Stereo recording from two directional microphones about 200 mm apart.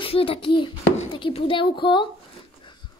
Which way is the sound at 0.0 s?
30° left (ahead or behind).